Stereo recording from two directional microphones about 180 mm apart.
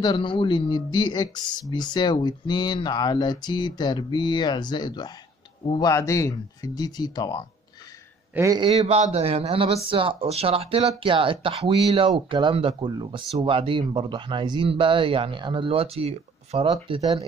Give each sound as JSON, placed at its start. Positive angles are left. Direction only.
{"t": 0.0, "sound": "speech", "side_deg": 25}
{"t": 8.4, "sound": "speech", "side_deg": -20}
{"t": 8.6, "sound": "speech", "side_deg": -35}